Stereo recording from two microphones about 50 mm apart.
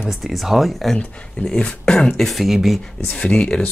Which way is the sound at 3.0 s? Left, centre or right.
Centre.